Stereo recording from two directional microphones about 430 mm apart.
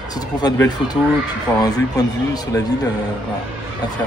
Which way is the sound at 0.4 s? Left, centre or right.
Centre.